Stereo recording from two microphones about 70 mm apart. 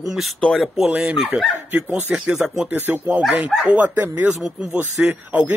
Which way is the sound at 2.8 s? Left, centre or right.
Right.